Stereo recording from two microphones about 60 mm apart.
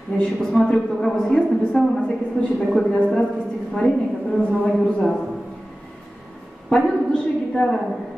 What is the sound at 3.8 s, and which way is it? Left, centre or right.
A woman's voice, centre.